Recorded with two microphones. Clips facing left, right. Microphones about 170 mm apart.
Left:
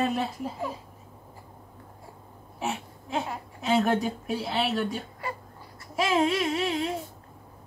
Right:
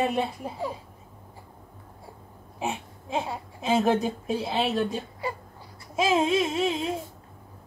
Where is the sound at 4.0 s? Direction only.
25° right (ahead or behind).